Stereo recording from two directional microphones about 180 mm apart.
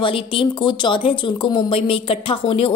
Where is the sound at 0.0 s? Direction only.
30° left (ahead or behind).